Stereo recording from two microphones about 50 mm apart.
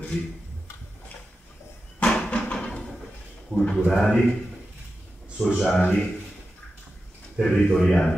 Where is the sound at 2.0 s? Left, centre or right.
Left.